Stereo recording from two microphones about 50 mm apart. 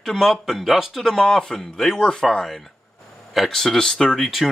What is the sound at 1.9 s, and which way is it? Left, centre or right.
Speech, centre.